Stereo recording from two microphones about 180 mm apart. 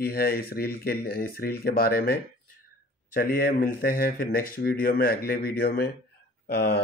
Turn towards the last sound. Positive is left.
turn(degrees=65)  # may be behind; listen again after turning